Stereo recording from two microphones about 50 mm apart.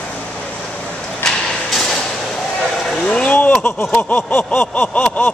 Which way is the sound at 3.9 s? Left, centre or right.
Left.